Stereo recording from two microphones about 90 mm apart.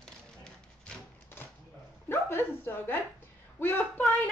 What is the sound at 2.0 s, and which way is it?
Speech, 25° left (ahead or behind).